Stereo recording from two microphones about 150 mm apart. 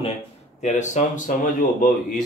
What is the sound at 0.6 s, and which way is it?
A man's voice, 55° left (ahead or behind).